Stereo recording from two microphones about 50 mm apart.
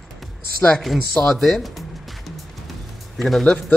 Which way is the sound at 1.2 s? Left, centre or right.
Centre.